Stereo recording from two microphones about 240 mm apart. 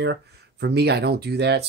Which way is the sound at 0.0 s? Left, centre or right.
Right.